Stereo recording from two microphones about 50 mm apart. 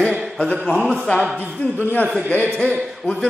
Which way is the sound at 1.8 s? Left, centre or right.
Left.